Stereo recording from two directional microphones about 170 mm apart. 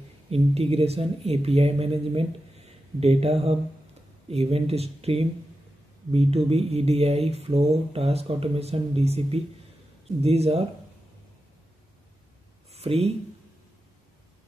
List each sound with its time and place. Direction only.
0.3 s speech: 35° right (ahead or behind)
12.7 s speech: 35° right (ahead or behind)